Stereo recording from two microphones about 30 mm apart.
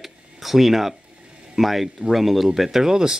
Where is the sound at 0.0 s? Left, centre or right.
Centre.